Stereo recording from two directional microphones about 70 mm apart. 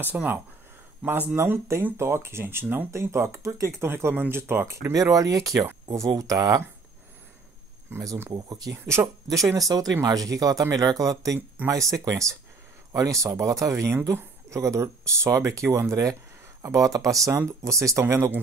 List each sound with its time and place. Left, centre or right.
0.0 s speech: right
1.3 s speech: right
2.9 s speech: right
4.9 s speech: right
8.4 s speech: right
11.6 s speech: right